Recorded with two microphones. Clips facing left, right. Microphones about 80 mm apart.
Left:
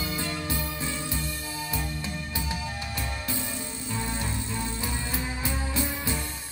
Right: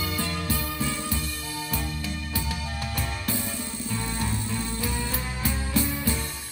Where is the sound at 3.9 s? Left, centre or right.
Centre.